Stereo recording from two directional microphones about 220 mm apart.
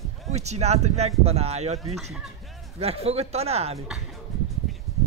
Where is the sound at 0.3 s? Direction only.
30° right (ahead or behind).